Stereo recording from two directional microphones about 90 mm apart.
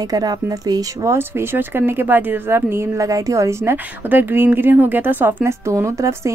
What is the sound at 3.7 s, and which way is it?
Speech, 20° right (ahead or behind).